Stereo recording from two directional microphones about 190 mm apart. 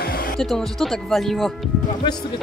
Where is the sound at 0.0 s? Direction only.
50° left (ahead or behind).